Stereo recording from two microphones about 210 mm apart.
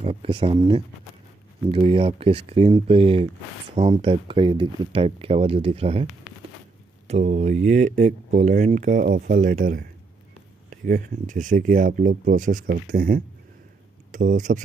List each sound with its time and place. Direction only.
0.0 s speech: 30° right (ahead or behind)
7.1 s speech: 35° right (ahead or behind)